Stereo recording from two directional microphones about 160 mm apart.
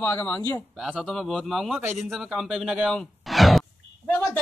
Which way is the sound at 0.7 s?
Centre (ahead or behind).